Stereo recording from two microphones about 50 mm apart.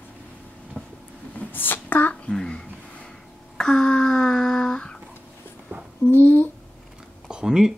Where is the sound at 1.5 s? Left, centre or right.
Left.